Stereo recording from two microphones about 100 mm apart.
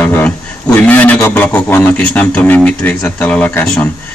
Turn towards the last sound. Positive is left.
turn(degrees=10)  # may be behind; listen again after turning